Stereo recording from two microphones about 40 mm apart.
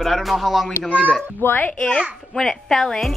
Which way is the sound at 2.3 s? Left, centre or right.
Centre.